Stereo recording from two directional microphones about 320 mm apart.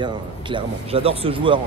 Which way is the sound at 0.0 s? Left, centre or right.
Centre.